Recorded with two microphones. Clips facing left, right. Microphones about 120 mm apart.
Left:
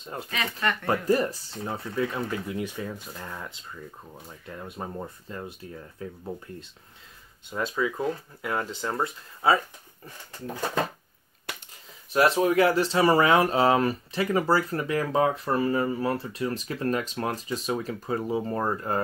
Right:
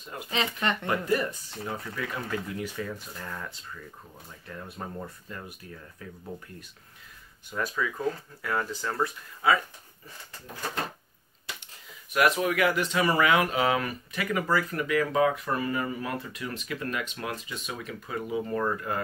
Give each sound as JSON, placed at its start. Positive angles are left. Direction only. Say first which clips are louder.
{"t": 0.0, "sound": "speech", "louder": "left 3 dB", "side_deg": 30}
{"t": 0.3, "sound": "speech", "louder": "right 1 dB", "side_deg": -25}
{"t": 0.8, "sound": "speech", "louder": "left 5 dB", "side_deg": 35}
{"t": 7.4, "sound": "speech", "louder": "left 3 dB", "side_deg": 20}
{"t": 12.1, "sound": "speech", "louder": "left 3 dB", "side_deg": 30}